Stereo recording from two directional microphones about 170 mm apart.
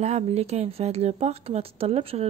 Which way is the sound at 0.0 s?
40° right (ahead or behind).